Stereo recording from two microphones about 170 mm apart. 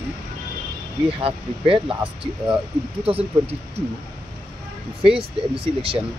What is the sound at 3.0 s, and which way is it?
Speech, 35° right (ahead or behind).